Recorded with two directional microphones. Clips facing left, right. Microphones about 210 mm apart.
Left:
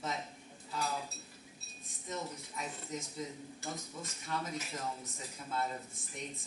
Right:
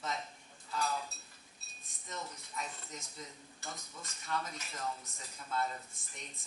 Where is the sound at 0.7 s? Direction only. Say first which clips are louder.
Right 1 dB; 10° left (ahead or behind).